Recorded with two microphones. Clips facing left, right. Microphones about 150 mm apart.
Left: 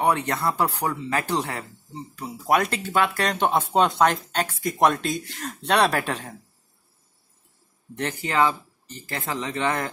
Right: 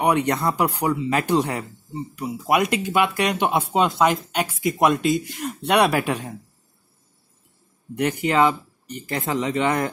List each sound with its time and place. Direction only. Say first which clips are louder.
0.0 s speech: right 3 dB; 15° right (ahead or behind)
7.9 s speech: right 6 dB; 15° right (ahead or behind)